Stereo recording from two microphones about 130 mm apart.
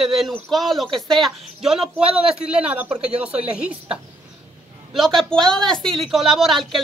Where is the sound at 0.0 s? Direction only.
Centre (ahead or behind).